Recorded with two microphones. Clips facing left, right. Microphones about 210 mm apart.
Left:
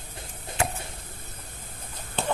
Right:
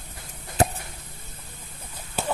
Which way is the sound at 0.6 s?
40° right (ahead or behind).